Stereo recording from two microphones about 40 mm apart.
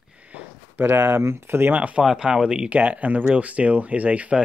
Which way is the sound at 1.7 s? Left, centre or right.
Right.